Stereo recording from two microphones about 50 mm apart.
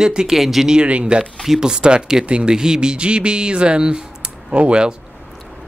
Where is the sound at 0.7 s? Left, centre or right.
Right.